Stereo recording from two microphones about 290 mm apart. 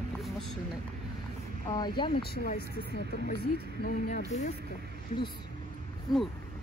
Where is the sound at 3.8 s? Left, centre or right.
Left.